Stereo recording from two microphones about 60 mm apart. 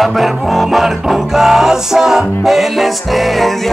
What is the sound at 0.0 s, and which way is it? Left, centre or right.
Music, centre.